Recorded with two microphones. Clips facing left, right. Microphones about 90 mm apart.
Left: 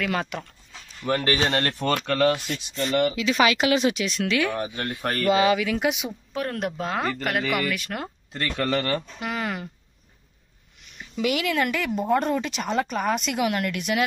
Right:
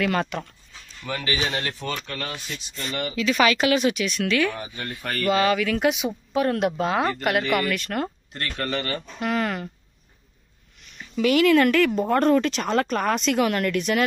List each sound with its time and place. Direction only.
0.0 s speech: 5° left (ahead or behind)
1.0 s a man's voice: 45° left (ahead or behind)
1.5 s speech: 60° left (ahead or behind)
1.9 s speech: 75° left (ahead or behind)
2.7 s speech: 25° left (ahead or behind)
5.8 s speech: centre (ahead or behind)
9.2 s speech: 10° left (ahead or behind)
11.1 s speech: 15° left (ahead or behind)
11.4 s speech: 5° left (ahead or behind)